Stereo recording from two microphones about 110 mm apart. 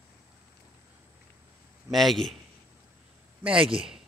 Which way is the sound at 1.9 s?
Centre (ahead or behind).